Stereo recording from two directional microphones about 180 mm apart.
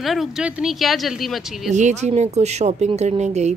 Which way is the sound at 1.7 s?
40° right (ahead or behind).